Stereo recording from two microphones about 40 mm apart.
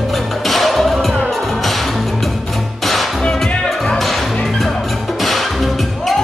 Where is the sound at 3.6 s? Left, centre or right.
Centre.